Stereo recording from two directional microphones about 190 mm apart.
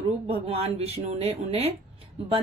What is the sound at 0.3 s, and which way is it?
A woman's voice, 30° right (ahead or behind).